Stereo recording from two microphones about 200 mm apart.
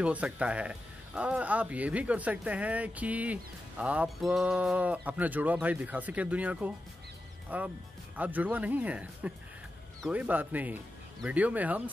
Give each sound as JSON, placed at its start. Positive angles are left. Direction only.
{"t": 0.0, "sound": "speech", "side_deg": -5}